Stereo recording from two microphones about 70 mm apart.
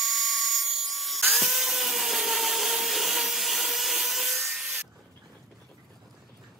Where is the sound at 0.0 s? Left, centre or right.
Centre.